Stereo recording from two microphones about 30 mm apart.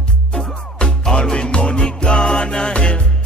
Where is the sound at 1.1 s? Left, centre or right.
Left.